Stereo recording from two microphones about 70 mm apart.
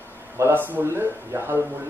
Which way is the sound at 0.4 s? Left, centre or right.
Right.